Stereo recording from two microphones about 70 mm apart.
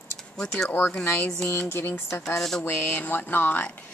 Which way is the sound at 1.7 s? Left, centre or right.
Left.